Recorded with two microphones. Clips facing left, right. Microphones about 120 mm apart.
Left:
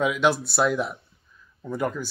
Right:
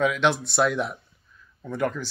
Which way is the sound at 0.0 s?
5° left (ahead or behind).